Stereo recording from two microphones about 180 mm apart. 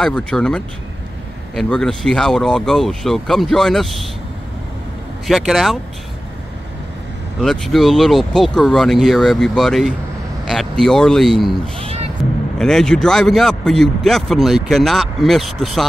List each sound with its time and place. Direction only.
0.0 s a man's voice: 5° left (ahead or behind)
5.2 s a man's voice: centre (ahead or behind)
7.4 s a man's voice: centre (ahead or behind)
11.8 s music: 35° right (ahead or behind)
12.5 s a man's voice: 5° left (ahead or behind)